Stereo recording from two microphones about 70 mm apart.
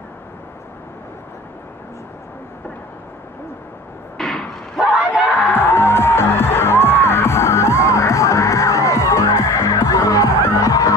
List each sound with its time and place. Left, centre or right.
4.2 s a sound: centre
4.7 s battle cry: centre
5.5 s music: left